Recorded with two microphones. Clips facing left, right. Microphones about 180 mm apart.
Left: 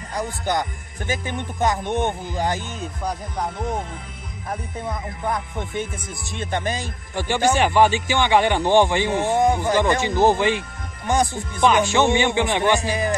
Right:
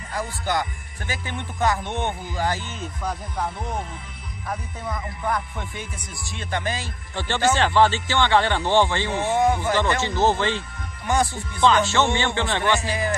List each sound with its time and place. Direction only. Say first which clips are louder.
0.1 s speech: left 2 dB; 20° left (ahead or behind)
4.5 s speech: left 2 dB; 25° left (ahead or behind)